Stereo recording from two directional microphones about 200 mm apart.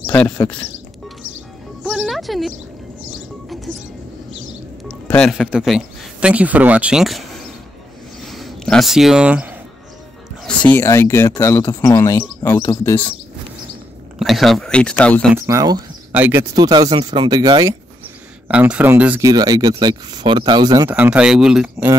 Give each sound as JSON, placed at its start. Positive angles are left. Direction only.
{"t": 0.0, "sound": "a sound", "side_deg": 5}
{"t": 1.8, "sound": "speech", "side_deg": 0}
{"t": 5.1, "sound": "speech", "side_deg": 5}
{"t": 8.2, "sound": "a sound", "side_deg": 0}
{"t": 10.4, "sound": "speech", "side_deg": 10}
{"t": 14.2, "sound": "speech", "side_deg": 0}
{"t": 15.3, "sound": "speech", "side_deg": -15}
{"t": 16.5, "sound": "speech", "side_deg": -20}
{"t": 18.5, "sound": "speech", "side_deg": -5}
{"t": 20.9, "sound": "speech", "side_deg": -5}